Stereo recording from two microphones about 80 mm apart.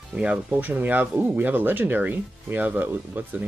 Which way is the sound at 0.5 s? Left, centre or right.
Right.